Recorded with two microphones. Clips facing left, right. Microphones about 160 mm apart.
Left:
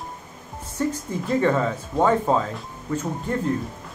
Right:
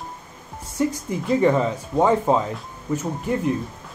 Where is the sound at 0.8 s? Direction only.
15° right (ahead or behind).